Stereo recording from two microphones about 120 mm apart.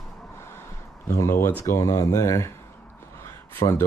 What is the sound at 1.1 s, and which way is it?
Speech, 25° left (ahead or behind).